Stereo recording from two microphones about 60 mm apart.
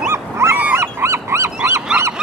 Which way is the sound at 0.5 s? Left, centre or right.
Right.